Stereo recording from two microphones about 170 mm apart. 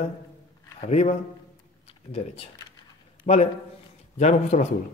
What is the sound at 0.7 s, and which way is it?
Speech, 40° left (ahead or behind).